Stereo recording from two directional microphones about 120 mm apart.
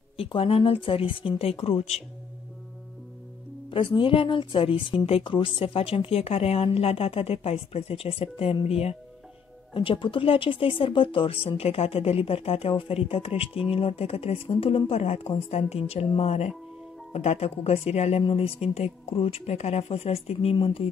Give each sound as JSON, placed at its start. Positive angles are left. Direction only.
{"t": 0.2, "sound": "speech", "side_deg": 50}
{"t": 3.7, "sound": "speech", "side_deg": 45}
{"t": 9.8, "sound": "speech", "side_deg": 45}
{"t": 18.2, "sound": "speech", "side_deg": 50}